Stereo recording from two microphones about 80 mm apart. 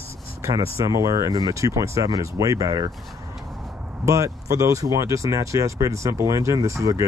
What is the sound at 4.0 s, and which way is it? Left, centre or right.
Speech, right.